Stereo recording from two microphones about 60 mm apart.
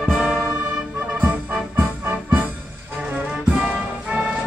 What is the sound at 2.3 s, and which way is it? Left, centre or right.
Music, right.